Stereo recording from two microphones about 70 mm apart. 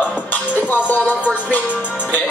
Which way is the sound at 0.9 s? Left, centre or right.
Left.